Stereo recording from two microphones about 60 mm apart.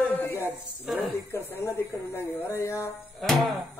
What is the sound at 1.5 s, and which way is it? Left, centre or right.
Speech, left.